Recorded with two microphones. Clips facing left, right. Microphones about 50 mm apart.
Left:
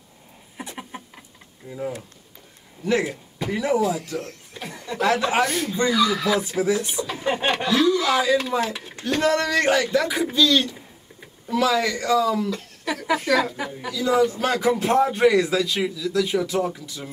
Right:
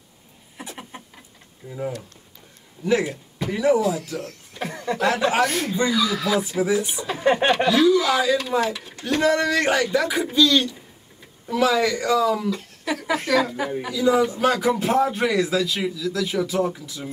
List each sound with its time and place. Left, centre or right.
0.7 s a sound: centre
1.6 s a man's voice: centre
7.2 s speech: right
7.6 s speech: centre
8.1 s a man's voice: centre
8.7 s a sound: centre
9.0 s a man's voice: centre